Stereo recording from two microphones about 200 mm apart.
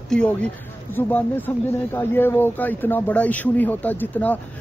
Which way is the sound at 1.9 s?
10° left (ahead or behind).